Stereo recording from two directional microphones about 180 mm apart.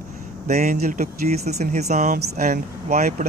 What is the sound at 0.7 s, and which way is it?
Speech, 55° right (ahead or behind).